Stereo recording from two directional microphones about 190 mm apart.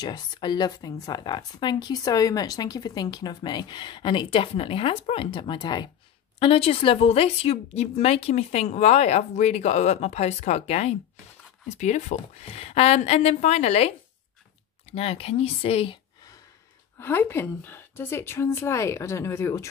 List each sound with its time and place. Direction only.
0.0 s a woman's voice: 25° left (ahead or behind)
17.0 s a woman's voice: 10° left (ahead or behind)